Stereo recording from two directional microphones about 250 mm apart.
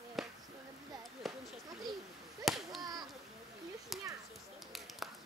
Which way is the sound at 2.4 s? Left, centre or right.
Centre.